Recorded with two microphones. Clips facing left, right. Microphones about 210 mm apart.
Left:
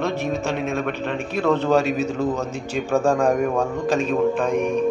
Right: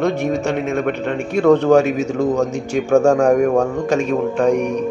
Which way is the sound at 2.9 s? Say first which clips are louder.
Right 6 dB; 70° right (ahead or behind).